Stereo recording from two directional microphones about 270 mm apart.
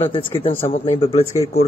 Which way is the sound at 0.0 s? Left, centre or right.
Centre.